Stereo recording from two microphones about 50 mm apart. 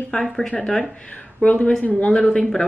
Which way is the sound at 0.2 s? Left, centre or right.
Centre.